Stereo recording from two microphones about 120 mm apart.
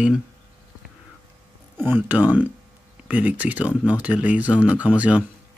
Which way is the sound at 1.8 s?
15° right (ahead or behind).